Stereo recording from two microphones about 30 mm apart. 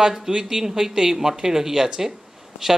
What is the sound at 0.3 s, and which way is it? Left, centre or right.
Speech, right.